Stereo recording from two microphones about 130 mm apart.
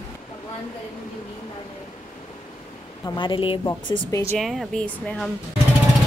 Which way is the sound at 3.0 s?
35° left (ahead or behind).